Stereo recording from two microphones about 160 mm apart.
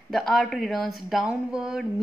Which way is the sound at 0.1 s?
Centre (ahead or behind).